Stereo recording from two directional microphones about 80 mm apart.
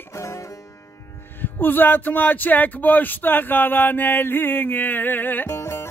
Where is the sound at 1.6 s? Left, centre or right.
Left.